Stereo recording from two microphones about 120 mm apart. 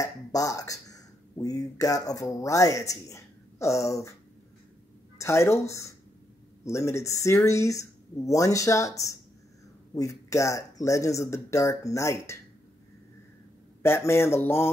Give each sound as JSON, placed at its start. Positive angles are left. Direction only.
{"t": 0.0, "sound": "speech", "side_deg": 30}
{"t": 5.2, "sound": "speech", "side_deg": 25}
{"t": 13.8, "sound": "speech", "side_deg": 20}